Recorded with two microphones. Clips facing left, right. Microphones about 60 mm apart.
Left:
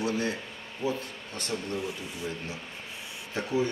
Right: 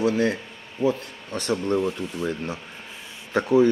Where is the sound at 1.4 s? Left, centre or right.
Right.